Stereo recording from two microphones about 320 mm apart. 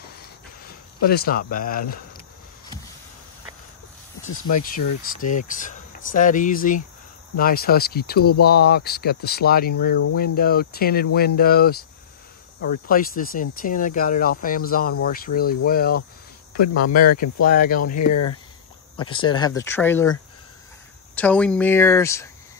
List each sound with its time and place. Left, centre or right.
1.0 s speech: left
4.5 s speech: left
12.8 s speech: left
16.5 s speech: left
17.4 s speech: left
18.1 s speech: left
19.0 s speech: centre